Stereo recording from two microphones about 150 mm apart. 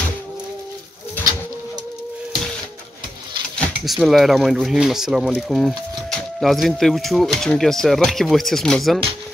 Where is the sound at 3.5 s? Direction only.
Centre (ahead or behind).